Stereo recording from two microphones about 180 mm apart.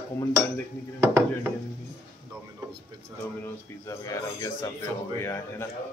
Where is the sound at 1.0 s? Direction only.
15° right (ahead or behind).